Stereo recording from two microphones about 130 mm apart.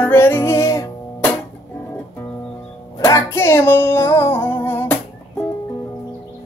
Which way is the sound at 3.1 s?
20° left (ahead or behind).